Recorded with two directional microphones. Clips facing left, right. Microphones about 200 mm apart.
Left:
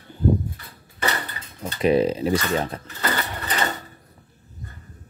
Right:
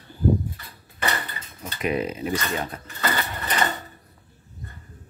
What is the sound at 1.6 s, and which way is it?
Speech, 30° left (ahead or behind).